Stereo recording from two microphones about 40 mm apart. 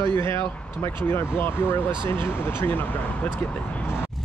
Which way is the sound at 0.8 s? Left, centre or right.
Left.